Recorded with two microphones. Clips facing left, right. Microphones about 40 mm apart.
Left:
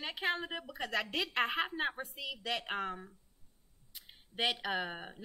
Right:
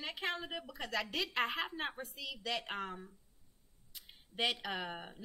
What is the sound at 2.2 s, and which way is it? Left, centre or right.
Speech, centre.